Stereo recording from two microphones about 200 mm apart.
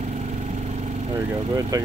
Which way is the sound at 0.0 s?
35° right (ahead or behind).